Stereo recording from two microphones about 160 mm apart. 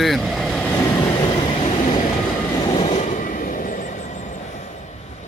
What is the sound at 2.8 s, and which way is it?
Train, 45° left (ahead or behind).